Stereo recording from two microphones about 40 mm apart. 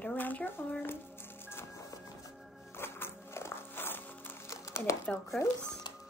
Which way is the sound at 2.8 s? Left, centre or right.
Left.